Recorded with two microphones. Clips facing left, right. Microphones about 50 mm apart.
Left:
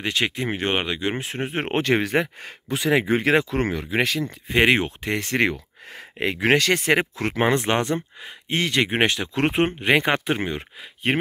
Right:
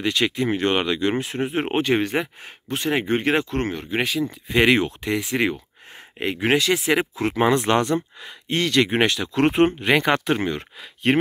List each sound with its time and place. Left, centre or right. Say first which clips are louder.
0.0 s speech: right 3 dB; left
1.2 s speech: right 3 dB; left
1.7 s speech: left 2 dB; left
4.5 s speech: right 1 dB; left
5.2 s speech: left 1 dB; left; by 11.1 s centre